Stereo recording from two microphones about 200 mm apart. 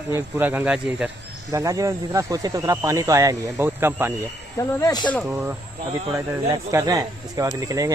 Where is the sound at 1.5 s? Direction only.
15° right (ahead or behind).